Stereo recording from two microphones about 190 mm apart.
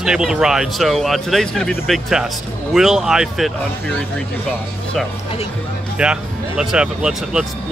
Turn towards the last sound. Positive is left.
turn(degrees=-5)  # may be behind; listen again after turning